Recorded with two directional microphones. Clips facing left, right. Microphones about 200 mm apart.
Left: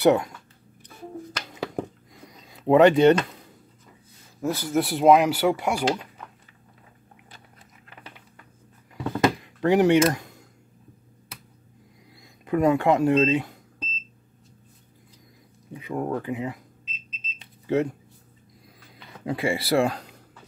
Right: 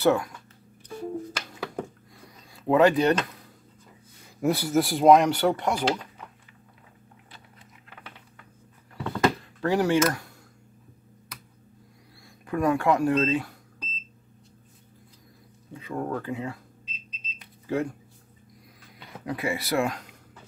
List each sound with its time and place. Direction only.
0.0 s speech: 20° left (ahead or behind)
2.1 s a sound: 20° left (ahead or behind)
4.4 s speech: 15° right (ahead or behind)
4.7 s speech: centre (ahead or behind)
8.9 s a sound: 15° left (ahead or behind)
12.4 s speech: 20° left (ahead or behind)
15.7 s speech: 15° left (ahead or behind)
17.4 s a sound: 25° left (ahead or behind)
19.2 s speech: 30° left (ahead or behind)